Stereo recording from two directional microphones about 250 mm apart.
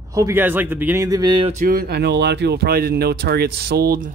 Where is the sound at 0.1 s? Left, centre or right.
Centre; by 4.1 s right.